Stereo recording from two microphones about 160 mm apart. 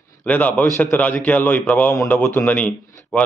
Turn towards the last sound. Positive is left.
turn(degrees=10)  # may be behind; listen again after turning